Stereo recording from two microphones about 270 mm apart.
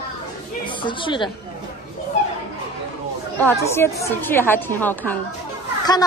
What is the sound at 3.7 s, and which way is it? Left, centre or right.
A woman's voice, centre.